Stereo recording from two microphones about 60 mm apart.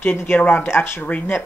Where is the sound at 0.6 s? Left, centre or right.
Left.